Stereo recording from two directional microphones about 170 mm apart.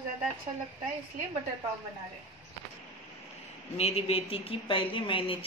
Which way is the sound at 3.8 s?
35° left (ahead or behind).